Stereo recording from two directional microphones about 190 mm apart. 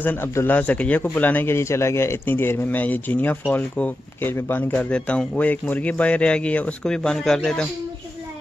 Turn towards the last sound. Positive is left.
turn(degrees=5)  # may be behind; listen again after turning